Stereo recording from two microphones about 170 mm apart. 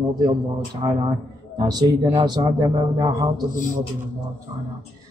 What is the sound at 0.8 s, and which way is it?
Speech, 25° right (ahead or behind).